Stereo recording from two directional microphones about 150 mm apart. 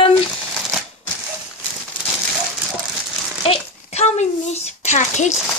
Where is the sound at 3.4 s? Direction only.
45° left (ahead or behind).